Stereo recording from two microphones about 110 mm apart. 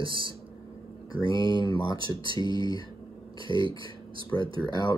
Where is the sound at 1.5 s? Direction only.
40° left (ahead or behind).